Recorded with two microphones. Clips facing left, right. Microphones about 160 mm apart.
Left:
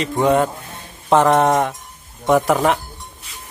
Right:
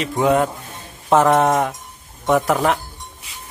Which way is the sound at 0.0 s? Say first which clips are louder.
Left 1 dB; centre (ahead or behind).